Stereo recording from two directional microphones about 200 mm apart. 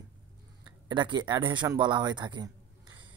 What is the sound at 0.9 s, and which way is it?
Speech, 20° right (ahead or behind).